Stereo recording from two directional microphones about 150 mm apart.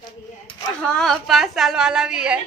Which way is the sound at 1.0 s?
Centre (ahead or behind).